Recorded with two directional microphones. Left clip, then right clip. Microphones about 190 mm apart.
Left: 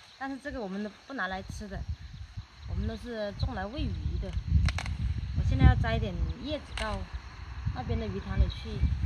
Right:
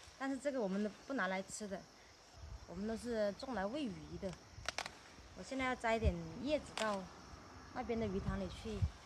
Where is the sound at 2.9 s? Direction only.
10° right (ahead or behind).